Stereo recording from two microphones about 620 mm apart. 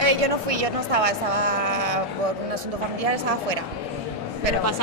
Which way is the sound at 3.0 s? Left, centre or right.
Right.